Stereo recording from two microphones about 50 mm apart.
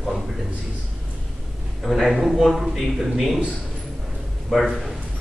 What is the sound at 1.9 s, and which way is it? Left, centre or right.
A man's voice, centre.